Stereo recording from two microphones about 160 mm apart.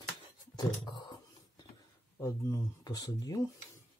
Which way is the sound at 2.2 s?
20° left (ahead or behind).